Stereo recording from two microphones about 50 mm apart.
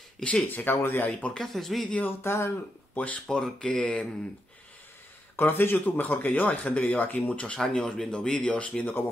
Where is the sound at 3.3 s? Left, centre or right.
Centre.